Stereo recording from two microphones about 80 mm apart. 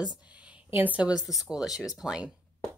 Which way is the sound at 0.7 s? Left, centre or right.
Centre.